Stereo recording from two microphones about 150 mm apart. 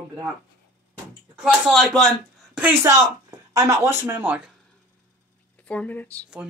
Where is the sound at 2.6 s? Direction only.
15° right (ahead or behind).